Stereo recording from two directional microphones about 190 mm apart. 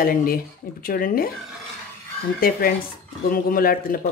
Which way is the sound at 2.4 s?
50° left (ahead or behind).